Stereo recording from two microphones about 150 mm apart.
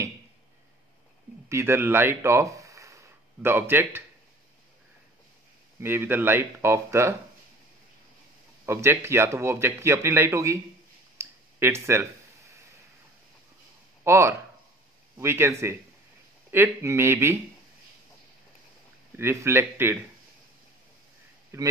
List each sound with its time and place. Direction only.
1.5 s speech: 15° right (ahead or behind)
5.8 s speech: 15° right (ahead or behind)
8.6 s speech: 15° right (ahead or behind)
11.1 s a sound: 20° right (ahead or behind)
14.0 s speech: 20° right (ahead or behind)
19.1 s speech: 15° right (ahead or behind)
21.5 s speech: 20° right (ahead or behind)